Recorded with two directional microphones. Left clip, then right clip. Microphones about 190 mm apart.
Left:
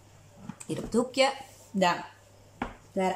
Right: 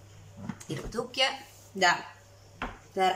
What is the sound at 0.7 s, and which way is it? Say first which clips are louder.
Speech: left 6 dB; 25° left (ahead or behind).